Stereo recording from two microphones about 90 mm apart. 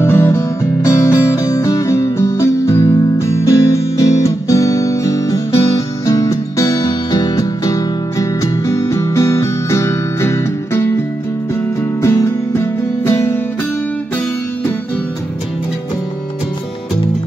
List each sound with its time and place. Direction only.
0.0 s music: 25° left (ahead or behind)
12.0 s music: 30° left (ahead or behind)